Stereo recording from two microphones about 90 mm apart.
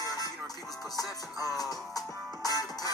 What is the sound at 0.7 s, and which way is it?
Speech, centre (ahead or behind).